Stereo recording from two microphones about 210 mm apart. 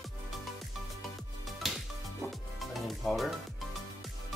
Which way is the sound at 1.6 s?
Centre (ahead or behind).